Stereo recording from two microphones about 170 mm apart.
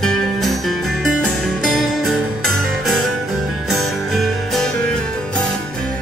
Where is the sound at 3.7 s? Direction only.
Centre (ahead or behind).